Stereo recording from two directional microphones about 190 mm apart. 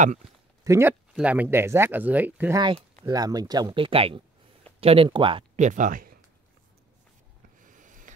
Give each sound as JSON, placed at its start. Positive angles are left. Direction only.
{"t": 0.7, "sound": "speech", "side_deg": -15}
{"t": 5.6, "sound": "speech", "side_deg": -40}
{"t": 7.5, "sound": "a sound", "side_deg": -45}